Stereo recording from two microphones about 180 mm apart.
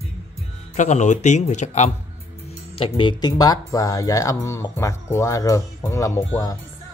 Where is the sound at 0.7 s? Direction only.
40° left (ahead or behind).